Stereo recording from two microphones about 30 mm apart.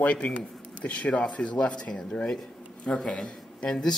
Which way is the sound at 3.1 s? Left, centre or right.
Left.